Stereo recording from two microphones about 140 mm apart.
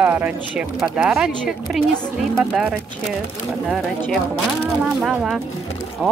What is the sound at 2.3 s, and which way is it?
Speech, 5° right (ahead or behind).